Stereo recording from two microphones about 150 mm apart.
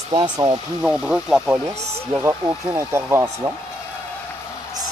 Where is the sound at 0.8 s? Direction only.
5° right (ahead or behind).